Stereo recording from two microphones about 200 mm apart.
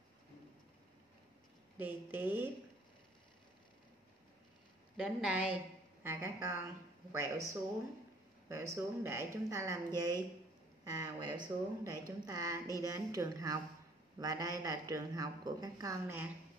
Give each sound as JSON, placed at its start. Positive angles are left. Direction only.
{"t": 1.8, "sound": "a woman's voice", "side_deg": -10}
{"t": 4.9, "sound": "a woman's voice", "side_deg": -5}